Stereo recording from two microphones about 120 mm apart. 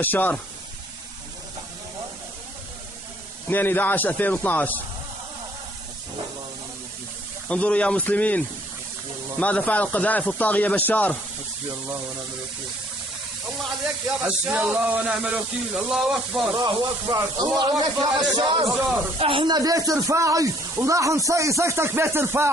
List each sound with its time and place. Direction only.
0.0 s a man's voice: 15° left (ahead or behind)
3.4 s a man's voice: 15° left (ahead or behind)
7.4 s a man's voice: 10° left (ahead or behind)
14.2 s a sound: 10° right (ahead or behind)
16.5 s a man's voice: 40° right (ahead or behind); by 22.5 s 20° right (ahead or behind)